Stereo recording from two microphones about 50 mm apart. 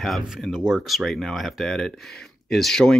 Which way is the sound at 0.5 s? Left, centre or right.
Centre.